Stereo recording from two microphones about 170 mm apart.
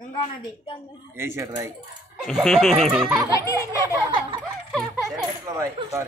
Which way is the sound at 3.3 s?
20° left (ahead or behind).